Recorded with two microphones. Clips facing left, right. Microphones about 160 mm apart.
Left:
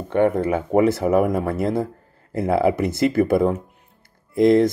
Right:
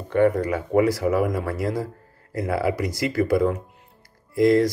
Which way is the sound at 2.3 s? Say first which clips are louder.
Left 5 dB; 30° left (ahead or behind).